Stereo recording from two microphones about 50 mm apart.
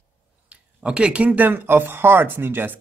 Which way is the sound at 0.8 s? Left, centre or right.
Right.